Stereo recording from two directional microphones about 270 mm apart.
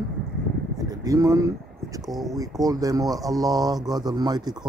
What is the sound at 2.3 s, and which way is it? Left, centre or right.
Speech, centre.